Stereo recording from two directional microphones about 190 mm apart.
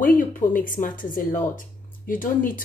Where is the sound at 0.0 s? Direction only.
45° left (ahead or behind).